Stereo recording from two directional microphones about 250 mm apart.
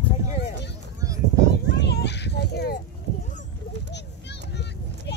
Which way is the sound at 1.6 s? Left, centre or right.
Left.